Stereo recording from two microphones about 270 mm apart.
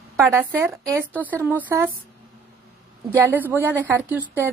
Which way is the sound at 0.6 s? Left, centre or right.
Centre.